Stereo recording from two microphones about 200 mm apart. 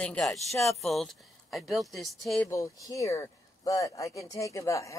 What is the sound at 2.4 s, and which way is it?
Speech, 15° left (ahead or behind).